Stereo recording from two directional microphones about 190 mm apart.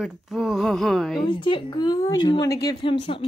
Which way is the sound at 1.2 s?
25° left (ahead or behind).